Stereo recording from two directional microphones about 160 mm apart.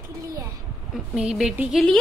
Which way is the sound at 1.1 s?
5° right (ahead or behind).